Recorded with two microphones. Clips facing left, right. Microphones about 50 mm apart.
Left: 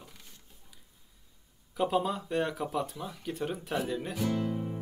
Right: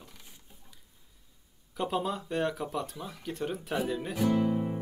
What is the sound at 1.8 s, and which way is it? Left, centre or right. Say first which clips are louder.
Speech: left 2 dB; centre.